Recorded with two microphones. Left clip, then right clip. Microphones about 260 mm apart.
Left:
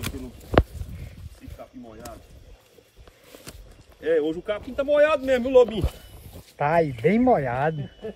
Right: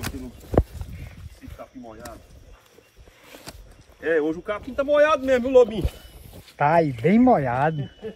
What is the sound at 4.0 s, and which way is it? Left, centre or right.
Speech, centre.